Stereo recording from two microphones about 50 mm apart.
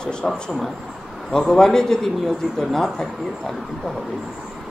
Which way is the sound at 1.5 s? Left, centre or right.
Centre.